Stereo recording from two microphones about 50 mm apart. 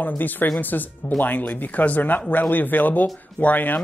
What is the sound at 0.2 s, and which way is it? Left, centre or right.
Speech, left.